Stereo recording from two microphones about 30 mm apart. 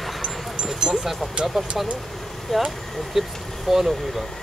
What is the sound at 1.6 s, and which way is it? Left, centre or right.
Speech, centre.